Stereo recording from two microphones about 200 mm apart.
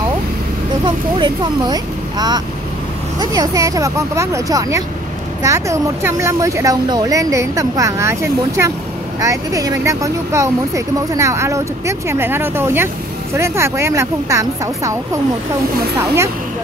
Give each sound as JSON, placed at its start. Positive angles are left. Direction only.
{"t": 0.8, "sound": "speech", "side_deg": -25}